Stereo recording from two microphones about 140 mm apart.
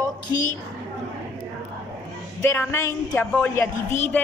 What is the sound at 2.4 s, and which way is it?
A woman's voice, 15° left (ahead or behind).